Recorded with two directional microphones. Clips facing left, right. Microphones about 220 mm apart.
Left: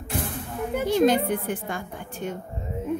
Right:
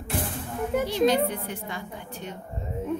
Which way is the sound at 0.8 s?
50° left (ahead or behind).